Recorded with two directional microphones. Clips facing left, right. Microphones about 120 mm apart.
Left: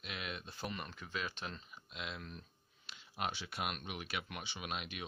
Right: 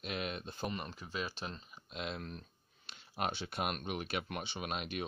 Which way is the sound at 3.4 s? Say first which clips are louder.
Right 4 dB; 50° right (ahead or behind).